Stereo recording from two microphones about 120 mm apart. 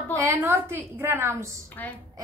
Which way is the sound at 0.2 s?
20° right (ahead or behind).